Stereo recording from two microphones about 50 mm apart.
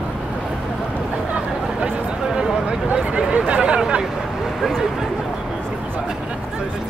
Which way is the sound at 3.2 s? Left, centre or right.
Centre.